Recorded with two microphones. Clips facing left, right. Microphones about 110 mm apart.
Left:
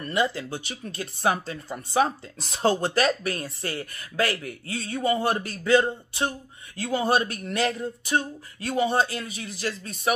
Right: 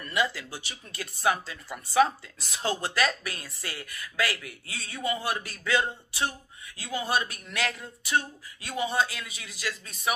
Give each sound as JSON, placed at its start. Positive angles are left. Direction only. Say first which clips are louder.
{"t": 0.0, "sound": "speech", "louder": "left 4 dB", "side_deg": 35}